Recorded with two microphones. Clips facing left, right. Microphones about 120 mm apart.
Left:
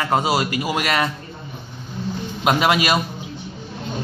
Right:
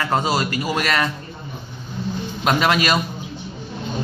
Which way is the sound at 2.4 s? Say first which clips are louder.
Left 1 dB; 10° left (ahead or behind).